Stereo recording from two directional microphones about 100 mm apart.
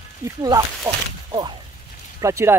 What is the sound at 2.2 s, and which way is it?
Speech, 30° right (ahead or behind).